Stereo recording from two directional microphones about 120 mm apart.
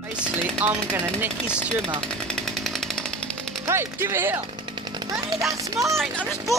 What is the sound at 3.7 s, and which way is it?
Speech, 20° right (ahead or behind).